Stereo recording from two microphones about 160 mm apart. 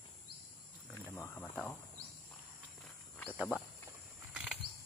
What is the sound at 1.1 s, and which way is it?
Speech, 15° left (ahead or behind).